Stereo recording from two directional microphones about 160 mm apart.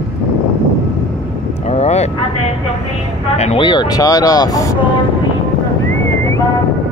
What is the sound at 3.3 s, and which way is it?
Speech, 45° left (ahead or behind).